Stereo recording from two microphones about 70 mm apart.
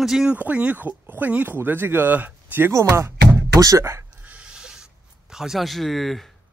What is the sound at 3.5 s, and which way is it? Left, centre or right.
Speech, right.